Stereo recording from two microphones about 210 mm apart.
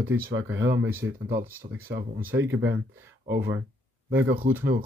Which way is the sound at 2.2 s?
10° right (ahead or behind).